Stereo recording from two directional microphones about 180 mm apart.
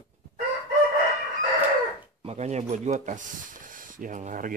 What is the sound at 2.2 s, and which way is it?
Speech, 35° right (ahead or behind).